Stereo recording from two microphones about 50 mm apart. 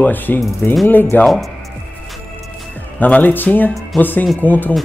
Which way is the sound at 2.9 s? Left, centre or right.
Left.